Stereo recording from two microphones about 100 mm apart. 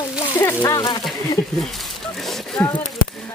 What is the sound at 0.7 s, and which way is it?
Speech, 40° left (ahead or behind).